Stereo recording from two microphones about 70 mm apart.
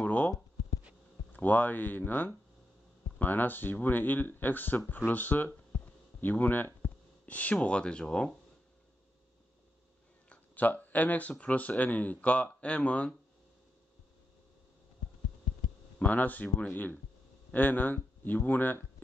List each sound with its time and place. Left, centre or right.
0.0 s a sound: left
1.3 s speech: left
6.2 s a sound: left
7.5 s speech: centre
10.3 s speech: left
16.0 s speech: left